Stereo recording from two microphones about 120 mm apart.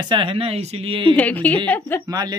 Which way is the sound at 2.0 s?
30° right (ahead or behind).